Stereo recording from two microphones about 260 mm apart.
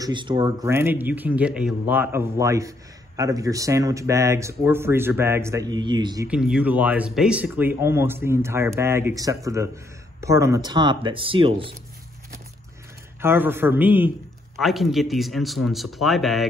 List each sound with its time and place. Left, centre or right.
0.0 s speech: centre
6.2 s speech: centre
13.2 s a man's voice: centre